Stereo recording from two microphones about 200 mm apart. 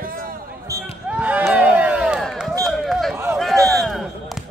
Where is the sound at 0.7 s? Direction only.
15° right (ahead or behind).